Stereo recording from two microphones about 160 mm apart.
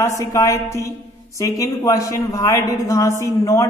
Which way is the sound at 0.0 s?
20° left (ahead or behind).